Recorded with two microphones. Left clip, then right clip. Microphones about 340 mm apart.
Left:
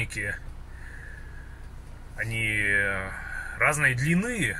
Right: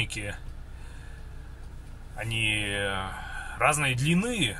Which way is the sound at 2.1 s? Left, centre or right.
Centre.